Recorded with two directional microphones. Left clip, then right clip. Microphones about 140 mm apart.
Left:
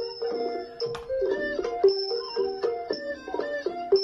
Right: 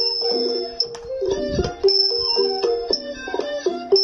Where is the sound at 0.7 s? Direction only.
20° right (ahead or behind).